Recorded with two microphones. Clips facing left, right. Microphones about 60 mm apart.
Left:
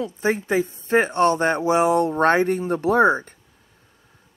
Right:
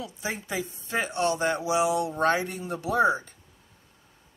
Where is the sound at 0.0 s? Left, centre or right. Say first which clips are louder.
Left 11 dB; left.